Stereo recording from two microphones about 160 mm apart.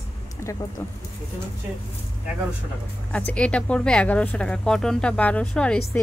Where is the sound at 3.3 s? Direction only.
5° left (ahead or behind).